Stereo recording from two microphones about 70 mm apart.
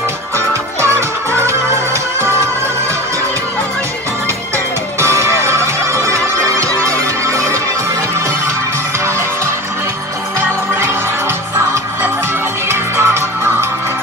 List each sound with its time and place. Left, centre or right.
0.5 s music: right
2.1 s music: right
5.0 s music: right
12.6 s music: right